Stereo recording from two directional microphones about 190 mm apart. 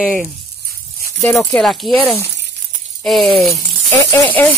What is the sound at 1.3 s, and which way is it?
Speech, 5° left (ahead or behind).